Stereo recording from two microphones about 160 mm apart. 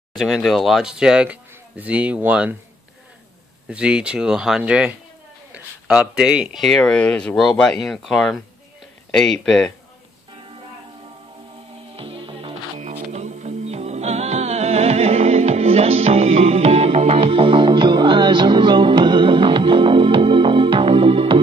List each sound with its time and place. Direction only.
0.1 s speech: centre (ahead or behind)
3.6 s speech: 5° right (ahead or behind)
10.3 s music: 30° right (ahead or behind)
12.0 s music: 35° right (ahead or behind)